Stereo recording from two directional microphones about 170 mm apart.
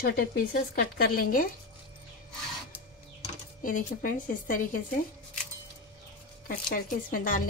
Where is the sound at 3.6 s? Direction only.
50° left (ahead or behind).